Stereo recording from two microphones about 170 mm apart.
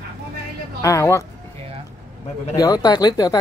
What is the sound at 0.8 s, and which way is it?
Speech, 15° left (ahead or behind).